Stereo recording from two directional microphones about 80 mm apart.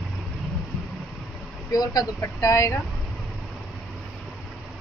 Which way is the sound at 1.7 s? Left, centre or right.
Left.